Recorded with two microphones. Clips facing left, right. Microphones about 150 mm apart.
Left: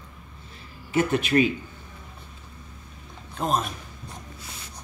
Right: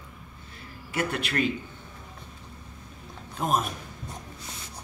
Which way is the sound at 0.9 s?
20° left (ahead or behind).